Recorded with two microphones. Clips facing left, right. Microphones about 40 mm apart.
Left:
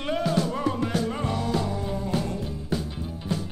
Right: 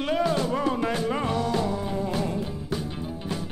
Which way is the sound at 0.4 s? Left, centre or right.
Right.